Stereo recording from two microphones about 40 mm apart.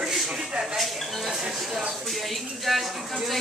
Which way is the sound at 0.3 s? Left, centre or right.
Right.